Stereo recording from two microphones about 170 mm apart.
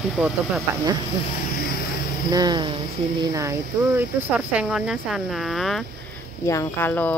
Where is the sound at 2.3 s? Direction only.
25° right (ahead or behind).